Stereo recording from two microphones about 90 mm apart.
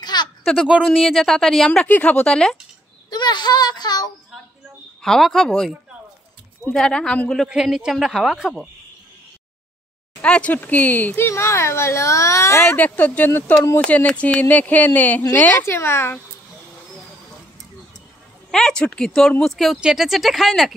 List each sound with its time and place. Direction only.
0.0 s a sound: 50° left (ahead or behind)
0.6 s speech: 10° right (ahead or behind)
0.8 s speech: 5° left (ahead or behind)
1.9 s speech: 15° left (ahead or behind)
3.1 s speech: 55° left (ahead or behind)
5.0 s speech: 5° left (ahead or behind)
7.4 s speech: 5° right (ahead or behind)
10.2 s speech: 15° left (ahead or behind); by 12.7 s 30° left (ahead or behind)
12.7 s speech: 20° left (ahead or behind)
18.5 s speech: 5° left (ahead or behind)